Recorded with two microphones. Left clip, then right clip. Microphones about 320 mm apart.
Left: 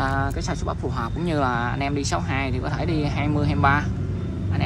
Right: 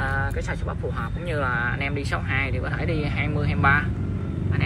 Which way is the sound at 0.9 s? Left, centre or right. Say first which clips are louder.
Left 4 dB; centre.